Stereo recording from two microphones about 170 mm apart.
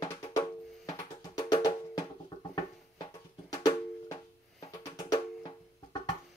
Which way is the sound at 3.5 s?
20° left (ahead or behind).